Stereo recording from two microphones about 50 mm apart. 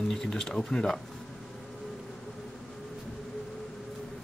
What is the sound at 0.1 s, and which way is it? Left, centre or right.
Speech, centre.